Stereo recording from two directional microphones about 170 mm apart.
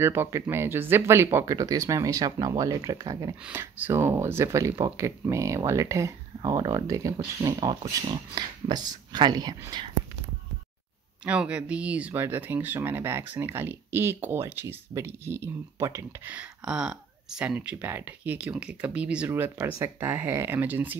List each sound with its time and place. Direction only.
0.0 s speech: 15° right (ahead or behind)
11.2 s speech: 5° right (ahead or behind)